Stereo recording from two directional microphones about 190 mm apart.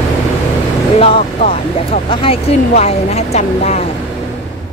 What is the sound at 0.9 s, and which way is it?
Speech, 30° left (ahead or behind).